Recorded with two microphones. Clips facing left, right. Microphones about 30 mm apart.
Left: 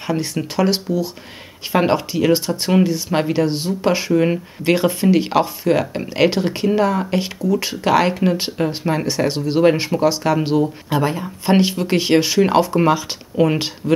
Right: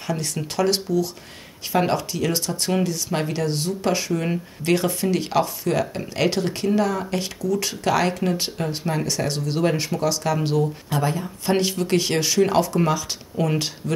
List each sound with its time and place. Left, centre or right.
0.0 s speech: left